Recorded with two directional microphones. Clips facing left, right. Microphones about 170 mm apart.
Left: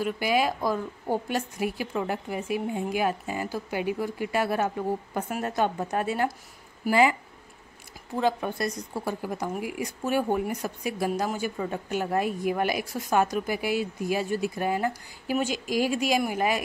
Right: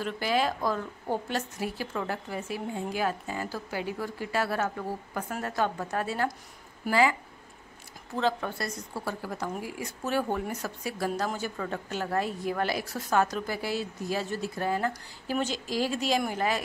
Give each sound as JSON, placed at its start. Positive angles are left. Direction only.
{"t": 0.0, "sound": "speech", "side_deg": 10}
{"t": 8.2, "sound": "speech", "side_deg": 15}